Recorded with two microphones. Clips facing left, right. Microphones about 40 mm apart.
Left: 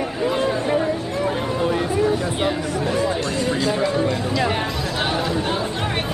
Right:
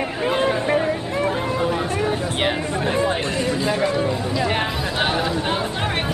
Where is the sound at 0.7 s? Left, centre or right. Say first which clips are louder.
Even; right.